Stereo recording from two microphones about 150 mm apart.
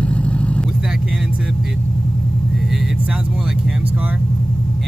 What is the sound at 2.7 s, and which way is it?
Vehicle, 5° right (ahead or behind).